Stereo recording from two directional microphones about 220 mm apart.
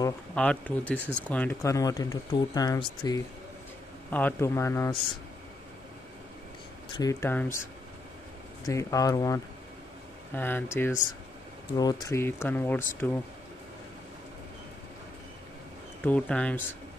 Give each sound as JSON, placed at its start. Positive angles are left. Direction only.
{"t": 0.0, "sound": "speech", "side_deg": 5}
{"t": 6.9, "sound": "speech", "side_deg": 15}
{"t": 8.6, "sound": "speech", "side_deg": 15}
{"t": 16.1, "sound": "speech", "side_deg": 5}